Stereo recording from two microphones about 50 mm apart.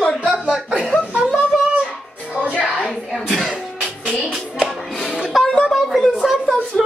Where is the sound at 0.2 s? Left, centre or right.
Centre.